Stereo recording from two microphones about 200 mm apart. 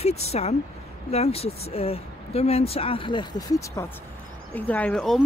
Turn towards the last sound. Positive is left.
turn(degrees=5)  # may be behind; listen again after turning